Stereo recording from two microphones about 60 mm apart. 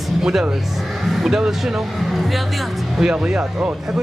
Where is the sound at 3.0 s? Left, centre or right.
Centre.